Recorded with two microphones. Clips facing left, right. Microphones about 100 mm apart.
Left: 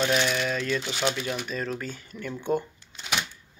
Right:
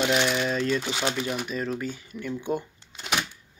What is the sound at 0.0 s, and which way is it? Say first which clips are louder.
Speech: right 1 dB; 20° right (ahead or behind).